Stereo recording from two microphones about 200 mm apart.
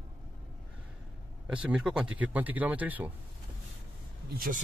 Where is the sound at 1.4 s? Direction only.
5° right (ahead or behind).